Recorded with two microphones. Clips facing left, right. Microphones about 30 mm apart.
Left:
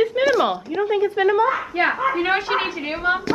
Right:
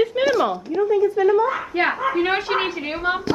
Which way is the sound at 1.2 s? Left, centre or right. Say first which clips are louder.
Left 1 dB; left.